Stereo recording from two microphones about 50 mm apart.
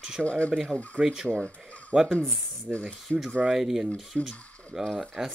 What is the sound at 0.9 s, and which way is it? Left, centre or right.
Speech, centre.